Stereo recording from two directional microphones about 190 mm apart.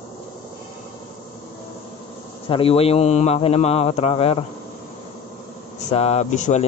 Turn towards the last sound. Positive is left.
turn(degrees=40)  # may be behind; listen again after turning